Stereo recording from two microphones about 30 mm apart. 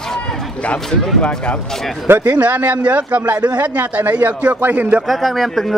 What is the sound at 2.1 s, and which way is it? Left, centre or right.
A man's voice, right.